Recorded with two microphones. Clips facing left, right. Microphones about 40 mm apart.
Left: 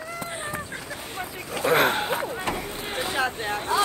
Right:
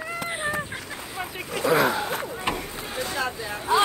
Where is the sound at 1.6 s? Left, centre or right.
Left.